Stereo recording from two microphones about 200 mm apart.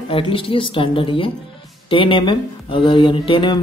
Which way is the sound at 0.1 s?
25° left (ahead or behind).